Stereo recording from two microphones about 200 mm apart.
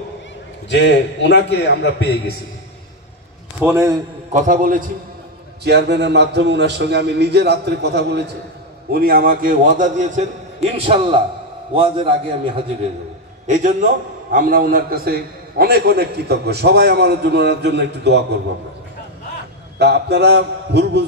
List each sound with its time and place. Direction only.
0.7 s a man's voice: 60° left (ahead or behind)
3.6 s a man's voice: 15° right (ahead or behind)
4.3 s a man's voice: 40° right (ahead or behind)
5.6 s a man's voice: 55° right (ahead or behind); by 12.6 s 25° right (ahead or behind)
13.5 s a man's voice: 40° right (ahead or behind); by 18.4 s 60° right (ahead or behind)
19.8 s a man's voice: 55° right (ahead or behind)